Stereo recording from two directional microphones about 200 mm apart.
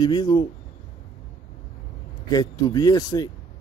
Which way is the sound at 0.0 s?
20° left (ahead or behind).